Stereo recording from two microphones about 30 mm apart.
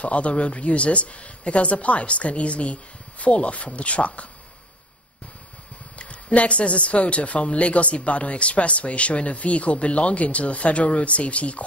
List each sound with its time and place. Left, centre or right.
0.0 s speech: left
5.9 s speech: left